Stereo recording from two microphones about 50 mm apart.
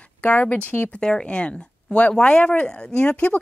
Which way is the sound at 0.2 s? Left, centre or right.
Left.